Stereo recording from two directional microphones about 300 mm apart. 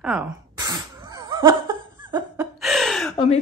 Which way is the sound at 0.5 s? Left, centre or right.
Centre.